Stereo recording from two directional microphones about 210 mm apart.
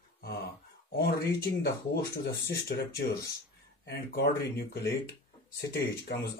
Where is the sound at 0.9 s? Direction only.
45° left (ahead or behind).